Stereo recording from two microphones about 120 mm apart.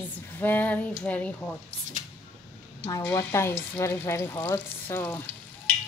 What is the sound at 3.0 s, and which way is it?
Frying, 20° left (ahead or behind).